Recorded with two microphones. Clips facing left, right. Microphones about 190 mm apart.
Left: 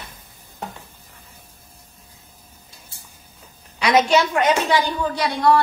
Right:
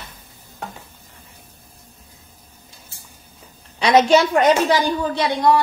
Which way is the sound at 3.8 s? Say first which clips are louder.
Right 3 dB; 30° right (ahead or behind).